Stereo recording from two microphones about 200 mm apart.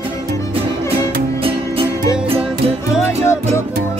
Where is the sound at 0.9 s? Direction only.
25° right (ahead or behind).